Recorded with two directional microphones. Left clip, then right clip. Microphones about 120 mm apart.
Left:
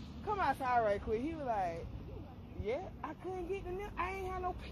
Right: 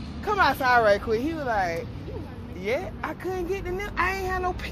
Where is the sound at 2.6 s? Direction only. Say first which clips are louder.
Right 11 dB; 25° left (ahead or behind).